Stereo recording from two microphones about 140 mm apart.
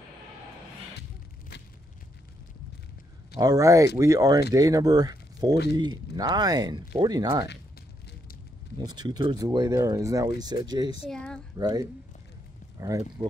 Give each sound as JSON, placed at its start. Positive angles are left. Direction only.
{"t": 3.3, "sound": "speech", "side_deg": -25}
{"t": 8.7, "sound": "speech", "side_deg": -30}
{"t": 11.1, "sound": "speech", "side_deg": 5}
{"t": 11.5, "sound": "speech", "side_deg": -25}